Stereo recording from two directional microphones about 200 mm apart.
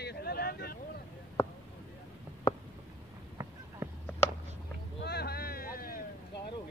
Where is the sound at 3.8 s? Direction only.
10° right (ahead or behind).